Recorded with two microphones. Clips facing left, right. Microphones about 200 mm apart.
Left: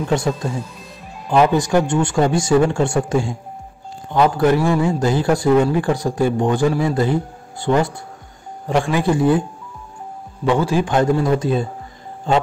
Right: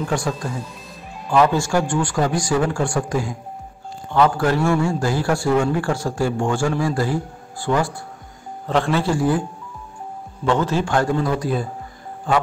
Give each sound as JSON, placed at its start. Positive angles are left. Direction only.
{"t": 0.1, "sound": "speech", "side_deg": 20}
{"t": 8.9, "sound": "speech", "side_deg": 20}
{"t": 10.4, "sound": "a man's voice", "side_deg": 15}